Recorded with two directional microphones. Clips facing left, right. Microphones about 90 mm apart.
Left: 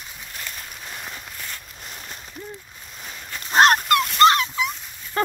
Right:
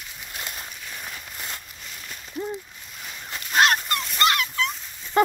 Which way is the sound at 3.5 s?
40° left (ahead or behind).